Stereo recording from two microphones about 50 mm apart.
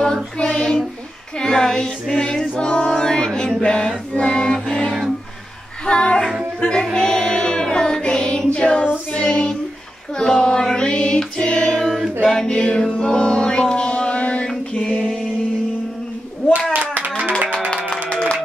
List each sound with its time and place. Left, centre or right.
0.0 s child singing: centre
1.4 s a sound: centre
3.6 s music: centre
5.9 s child singing: centre
6.6 s music: centre
9.1 s child singing: centre
12.3 s music: centre
16.7 s clapping: right